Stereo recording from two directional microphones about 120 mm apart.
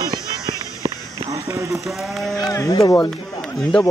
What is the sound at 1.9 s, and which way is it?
Speech, centre (ahead or behind).